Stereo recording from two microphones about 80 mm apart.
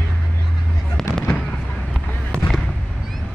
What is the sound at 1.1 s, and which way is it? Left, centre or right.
Fireworks, centre.